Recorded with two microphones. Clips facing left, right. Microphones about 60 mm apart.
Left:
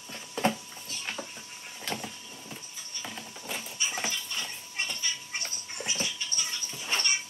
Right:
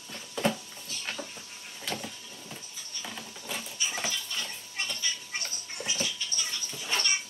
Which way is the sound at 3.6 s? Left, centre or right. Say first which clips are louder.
Even; centre.